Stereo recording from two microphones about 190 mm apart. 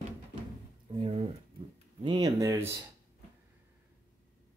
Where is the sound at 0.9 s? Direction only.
30° right (ahead or behind).